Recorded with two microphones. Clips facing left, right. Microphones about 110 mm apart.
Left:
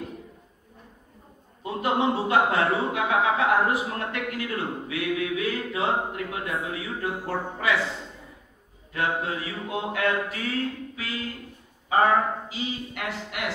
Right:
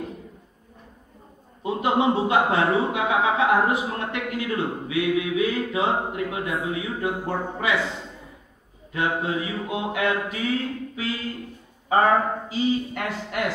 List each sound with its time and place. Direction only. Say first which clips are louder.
1.6 s speech: right 3 dB; 20° right (ahead or behind)
8.9 s a sound: right 3 dB; 20° right (ahead or behind)
11.9 s a man's voice: right 2 dB; 40° right (ahead or behind)